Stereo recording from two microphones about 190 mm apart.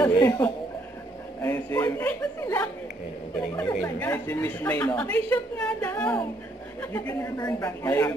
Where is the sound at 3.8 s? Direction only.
10° left (ahead or behind).